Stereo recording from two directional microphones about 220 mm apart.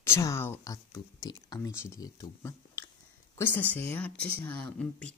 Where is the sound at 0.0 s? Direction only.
10° left (ahead or behind).